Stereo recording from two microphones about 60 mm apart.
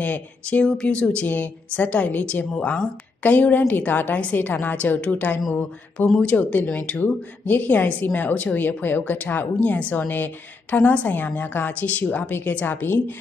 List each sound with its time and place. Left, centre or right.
0.0 s a woman's voice: left